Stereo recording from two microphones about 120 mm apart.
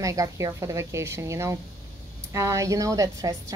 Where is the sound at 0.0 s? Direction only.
25° right (ahead or behind).